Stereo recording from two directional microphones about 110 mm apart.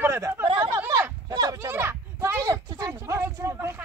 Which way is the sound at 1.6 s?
20° right (ahead or behind).